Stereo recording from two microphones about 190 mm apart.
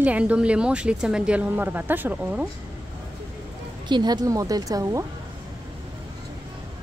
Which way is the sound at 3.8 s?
25° right (ahead or behind).